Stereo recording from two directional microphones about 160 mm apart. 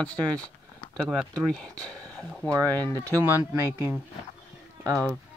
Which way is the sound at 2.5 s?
20° right (ahead or behind).